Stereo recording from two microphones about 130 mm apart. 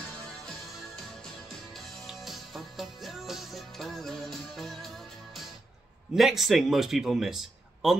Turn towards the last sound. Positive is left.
turn(degrees=-5)  # may be behind; listen again after turning